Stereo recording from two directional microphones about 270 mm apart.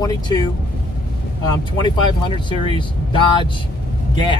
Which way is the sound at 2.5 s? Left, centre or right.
Centre.